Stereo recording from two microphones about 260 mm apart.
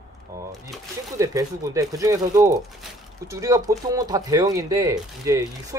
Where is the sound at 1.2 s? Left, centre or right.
Centre.